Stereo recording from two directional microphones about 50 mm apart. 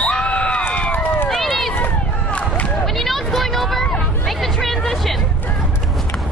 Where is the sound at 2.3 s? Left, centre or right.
Left.